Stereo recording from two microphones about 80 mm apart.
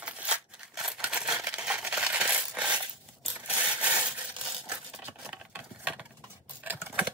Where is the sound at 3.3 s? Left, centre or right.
Centre.